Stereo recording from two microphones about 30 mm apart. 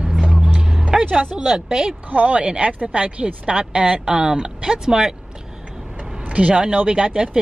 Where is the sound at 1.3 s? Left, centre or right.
Right.